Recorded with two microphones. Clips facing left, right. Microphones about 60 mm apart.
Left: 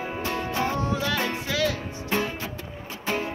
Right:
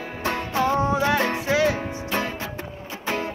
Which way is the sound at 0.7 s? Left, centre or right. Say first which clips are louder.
Right 6 dB; right.